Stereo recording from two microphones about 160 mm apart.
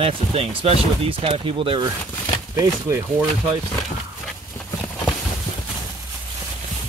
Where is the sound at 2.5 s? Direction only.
15° right (ahead or behind).